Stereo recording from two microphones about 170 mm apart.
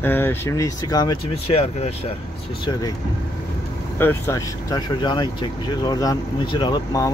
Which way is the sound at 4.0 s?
15° left (ahead or behind).